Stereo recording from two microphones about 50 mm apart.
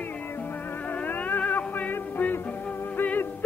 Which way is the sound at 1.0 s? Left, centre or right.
Left.